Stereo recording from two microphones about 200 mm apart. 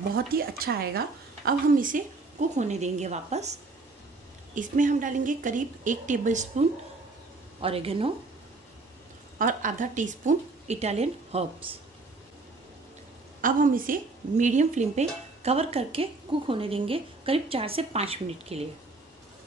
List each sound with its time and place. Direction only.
0.1 s a woman's voice: 50° right (ahead or behind)
4.6 s a woman's voice: 40° right (ahead or behind)
7.6 s speech: 30° right (ahead or behind)
9.4 s a woman's voice: 40° right (ahead or behind)
13.4 s a woman's voice: 45° right (ahead or behind)